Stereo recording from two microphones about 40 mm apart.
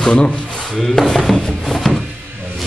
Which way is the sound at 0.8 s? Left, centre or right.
Centre.